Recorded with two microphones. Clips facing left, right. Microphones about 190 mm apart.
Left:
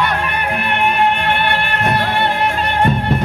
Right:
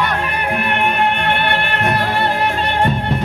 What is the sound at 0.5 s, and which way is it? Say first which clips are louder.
Music: left 1 dB; 50° right (ahead or behind).